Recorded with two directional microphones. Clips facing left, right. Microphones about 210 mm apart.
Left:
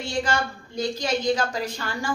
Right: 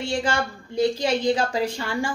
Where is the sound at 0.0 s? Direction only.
30° right (ahead or behind).